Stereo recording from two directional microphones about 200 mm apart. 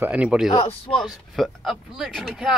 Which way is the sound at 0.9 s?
Centre (ahead or behind).